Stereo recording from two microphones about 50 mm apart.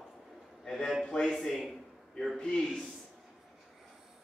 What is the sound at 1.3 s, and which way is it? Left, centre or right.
Speech, centre.